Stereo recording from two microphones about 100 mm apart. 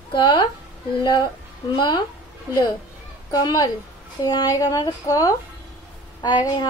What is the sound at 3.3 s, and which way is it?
A woman's voice, 50° left (ahead or behind).